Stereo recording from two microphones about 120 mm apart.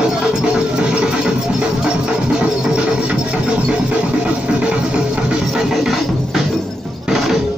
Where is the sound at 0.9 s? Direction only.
5° right (ahead or behind).